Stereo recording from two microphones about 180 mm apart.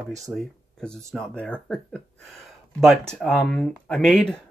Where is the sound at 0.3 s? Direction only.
5° left (ahead or behind).